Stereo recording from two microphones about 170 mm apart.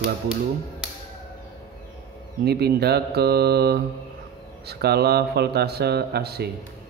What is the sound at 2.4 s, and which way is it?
Speech, 70° right (ahead or behind).